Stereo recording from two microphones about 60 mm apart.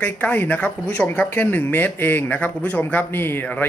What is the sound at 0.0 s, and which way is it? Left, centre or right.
Speech, left.